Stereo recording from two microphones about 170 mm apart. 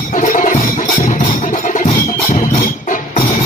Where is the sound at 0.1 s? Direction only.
50° left (ahead or behind).